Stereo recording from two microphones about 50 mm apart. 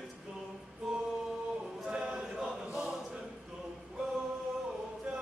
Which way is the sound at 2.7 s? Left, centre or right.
Centre.